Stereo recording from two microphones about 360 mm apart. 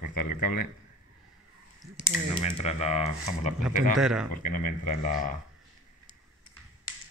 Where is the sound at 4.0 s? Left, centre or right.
Centre.